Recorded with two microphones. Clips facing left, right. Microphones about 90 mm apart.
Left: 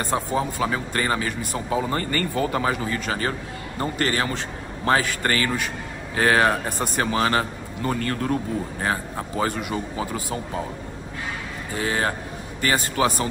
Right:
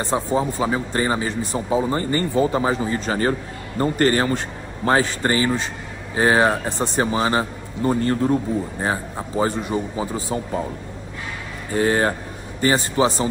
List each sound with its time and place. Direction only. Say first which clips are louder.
0.0 s speech: right 3 dB; 20° right (ahead or behind)
11.7 s speech: right 6 dB; 40° right (ahead or behind); by 13.3 s 25° right (ahead or behind)